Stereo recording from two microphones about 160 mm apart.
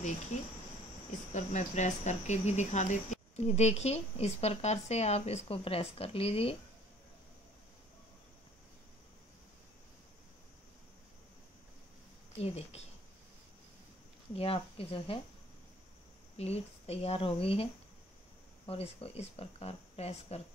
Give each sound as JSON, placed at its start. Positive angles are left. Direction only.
{"t": 1.3, "sound": "speech", "side_deg": 45}
{"t": 12.4, "sound": "speech", "side_deg": 40}
{"t": 14.3, "sound": "speech", "side_deg": 35}
{"t": 16.3, "sound": "speech", "side_deg": 40}
{"t": 18.7, "sound": "speech", "side_deg": 35}